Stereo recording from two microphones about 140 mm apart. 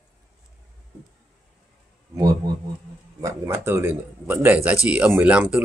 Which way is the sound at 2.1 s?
25° right (ahead or behind).